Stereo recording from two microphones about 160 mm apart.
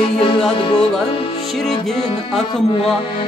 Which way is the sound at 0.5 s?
30° left (ahead or behind).